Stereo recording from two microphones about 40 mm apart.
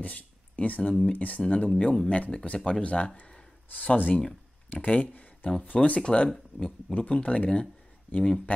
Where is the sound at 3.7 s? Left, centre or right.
Left.